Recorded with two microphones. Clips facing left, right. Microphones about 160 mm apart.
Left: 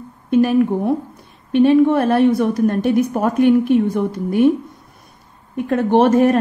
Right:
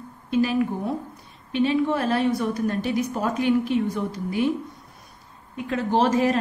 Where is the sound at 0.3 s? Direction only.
55° left (ahead or behind).